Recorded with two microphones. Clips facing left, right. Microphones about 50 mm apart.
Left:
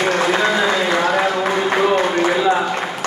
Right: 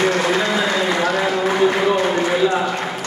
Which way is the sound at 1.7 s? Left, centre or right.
Left.